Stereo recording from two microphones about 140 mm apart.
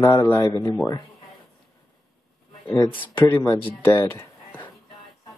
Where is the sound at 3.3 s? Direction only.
20° left (ahead or behind).